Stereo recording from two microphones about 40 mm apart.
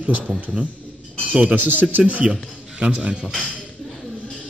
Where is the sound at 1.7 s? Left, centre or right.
Right.